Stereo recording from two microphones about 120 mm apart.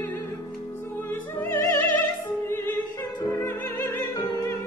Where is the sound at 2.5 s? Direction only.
20° left (ahead or behind).